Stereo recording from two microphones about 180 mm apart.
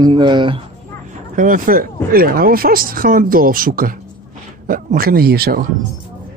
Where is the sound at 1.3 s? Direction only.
50° right (ahead or behind).